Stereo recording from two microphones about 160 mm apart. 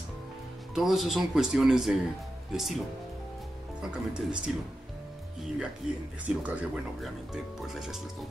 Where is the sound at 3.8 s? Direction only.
5° right (ahead or behind).